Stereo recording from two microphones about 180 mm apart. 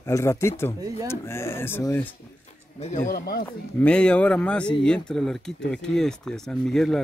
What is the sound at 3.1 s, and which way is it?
Speech, 55° left (ahead or behind).